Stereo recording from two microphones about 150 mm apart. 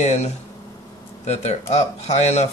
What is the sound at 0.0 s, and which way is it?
Speech, 45° left (ahead or behind).